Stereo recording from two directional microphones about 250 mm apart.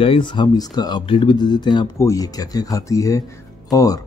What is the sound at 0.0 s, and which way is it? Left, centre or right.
Speech, centre.